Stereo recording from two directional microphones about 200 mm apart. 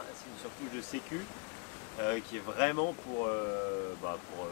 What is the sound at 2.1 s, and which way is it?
Speech, 15° left (ahead or behind).